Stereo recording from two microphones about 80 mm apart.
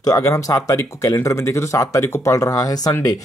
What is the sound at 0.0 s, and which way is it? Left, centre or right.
Speech, left.